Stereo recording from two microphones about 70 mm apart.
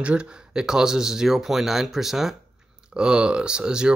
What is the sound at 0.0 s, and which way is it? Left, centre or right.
Speech, centre.